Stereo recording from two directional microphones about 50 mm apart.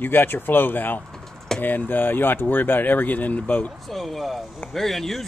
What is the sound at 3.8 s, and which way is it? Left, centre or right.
Speech, centre.